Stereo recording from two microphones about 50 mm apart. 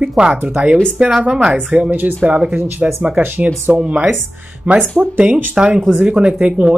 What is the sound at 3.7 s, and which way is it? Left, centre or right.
Speech, right.